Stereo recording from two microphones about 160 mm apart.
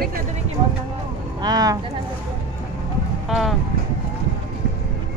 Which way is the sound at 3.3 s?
Centre (ahead or behind).